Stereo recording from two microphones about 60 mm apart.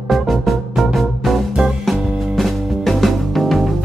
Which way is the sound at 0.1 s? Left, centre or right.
Centre.